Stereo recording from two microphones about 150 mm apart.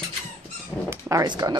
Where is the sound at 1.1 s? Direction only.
25° right (ahead or behind).